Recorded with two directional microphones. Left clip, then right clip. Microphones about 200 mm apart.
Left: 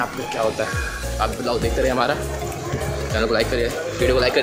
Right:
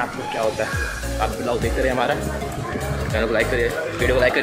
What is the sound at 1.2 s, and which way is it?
Speech, 15° left (ahead or behind).